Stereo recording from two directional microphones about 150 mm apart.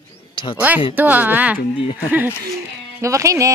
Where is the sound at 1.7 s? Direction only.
35° left (ahead or behind).